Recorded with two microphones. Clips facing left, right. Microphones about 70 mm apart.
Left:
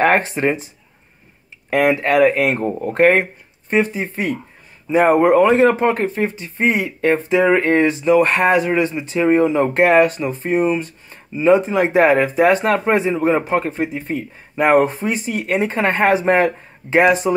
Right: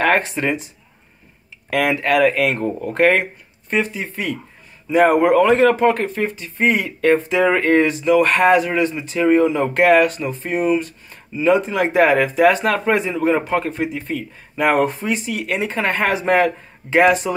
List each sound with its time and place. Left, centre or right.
0.0 s speech: left
1.7 s speech: left
2.0 s speech: left